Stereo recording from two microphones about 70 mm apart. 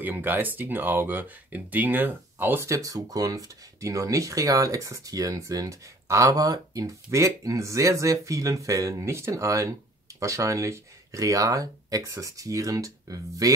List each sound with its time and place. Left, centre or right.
0.0 s speech: right
2.6 s speech: right
7.1 s speech: right